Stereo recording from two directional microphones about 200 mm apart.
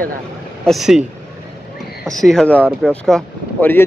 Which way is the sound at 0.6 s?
Centre (ahead or behind).